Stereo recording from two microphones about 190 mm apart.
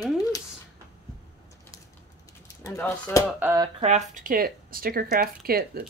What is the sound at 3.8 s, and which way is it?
Speech, 40° right (ahead or behind).